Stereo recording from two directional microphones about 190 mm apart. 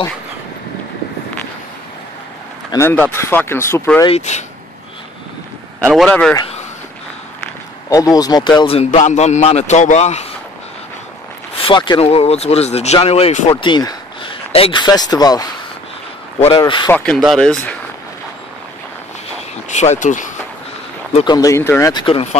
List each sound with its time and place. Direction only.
2.7 s speech: 10° left (ahead or behind)
4.2 s a man's voice: 35° left (ahead or behind)
5.9 s speech: 5° left (ahead or behind)
7.9 s a man's voice: 20° left (ahead or behind); by 10.2 s 35° left (ahead or behind)
11.5 s a man's voice: 25° left (ahead or behind)
13.5 s speech: 25° left (ahead or behind)
16.5 s speech: 20° left (ahead or behind)
16.9 s speech: 5° left (ahead or behind)
19.7 s a man's voice: 35° left (ahead or behind)
21.1 s speech: 25° left (ahead or behind)
22.0 s speech: 30° left (ahead or behind)